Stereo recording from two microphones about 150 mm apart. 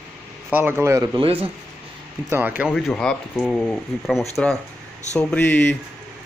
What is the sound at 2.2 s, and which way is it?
Speech, 15° right (ahead or behind).